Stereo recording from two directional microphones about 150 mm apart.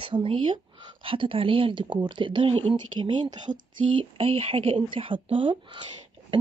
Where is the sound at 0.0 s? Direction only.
35° right (ahead or behind).